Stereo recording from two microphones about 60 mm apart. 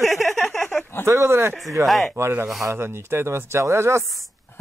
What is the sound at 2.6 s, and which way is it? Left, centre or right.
Speech, right.